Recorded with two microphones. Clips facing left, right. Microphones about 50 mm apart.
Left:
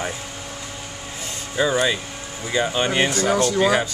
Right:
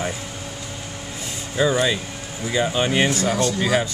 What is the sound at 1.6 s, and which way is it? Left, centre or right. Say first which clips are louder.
Speech: even; centre.